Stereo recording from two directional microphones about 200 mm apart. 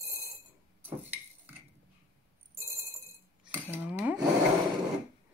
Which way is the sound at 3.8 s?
10° right (ahead or behind).